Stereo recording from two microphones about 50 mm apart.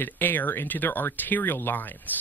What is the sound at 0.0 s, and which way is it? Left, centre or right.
A woman's voice, left.